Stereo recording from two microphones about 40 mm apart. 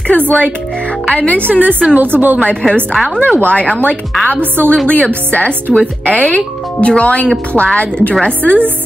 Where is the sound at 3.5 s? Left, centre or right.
Left.